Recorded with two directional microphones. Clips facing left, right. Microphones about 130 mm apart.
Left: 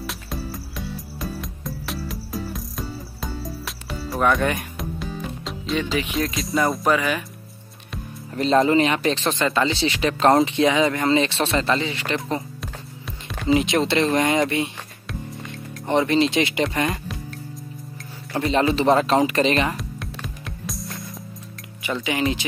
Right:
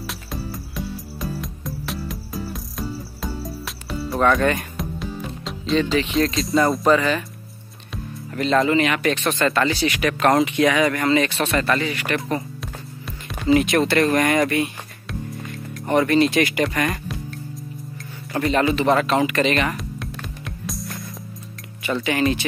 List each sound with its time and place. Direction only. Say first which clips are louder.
0.0 s music: even; centre (ahead or behind)
4.4 s speech: right 3 dB; 15° left (ahead or behind)
4.7 s music: right 1 dB; centre (ahead or behind)
5.8 s speech: right 4 dB; 10° left (ahead or behind)
6.1 s speech: right 5 dB; centre (ahead or behind)
8.4 s speech: left 1 dB; 35° left (ahead or behind)
12.5 s music: right 1 dB; centre (ahead or behind)
13.6 s speech: right 2 dB; 25° left (ahead or behind)
15.9 s speech: right 2 dB; 25° left (ahead or behind)
18.4 s speech: even; 25° left (ahead or behind)
19.8 s music: right 1 dB; centre (ahead or behind)
21.8 s speech: right 2 dB; 15° left (ahead or behind)